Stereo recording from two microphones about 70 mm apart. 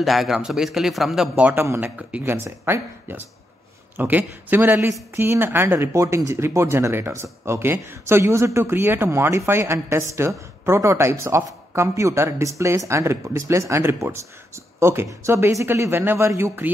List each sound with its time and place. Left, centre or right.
0.0 s a man's voice: centre
1.5 s speech: right
1.8 s speech: centre
2.2 s speech: right
16.3 s speech: right